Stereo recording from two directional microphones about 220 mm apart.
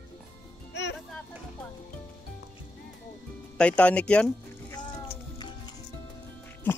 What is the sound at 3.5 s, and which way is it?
Speech, 5° left (ahead or behind).